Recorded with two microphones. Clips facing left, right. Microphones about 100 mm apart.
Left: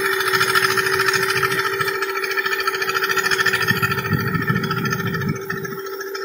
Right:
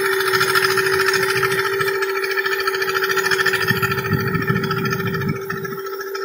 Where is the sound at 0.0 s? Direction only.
5° right (ahead or behind).